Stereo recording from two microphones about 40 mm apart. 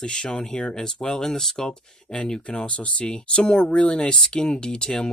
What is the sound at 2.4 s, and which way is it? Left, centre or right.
Speech, left.